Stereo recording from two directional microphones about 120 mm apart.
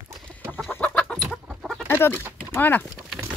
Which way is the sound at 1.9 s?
20° left (ahead or behind).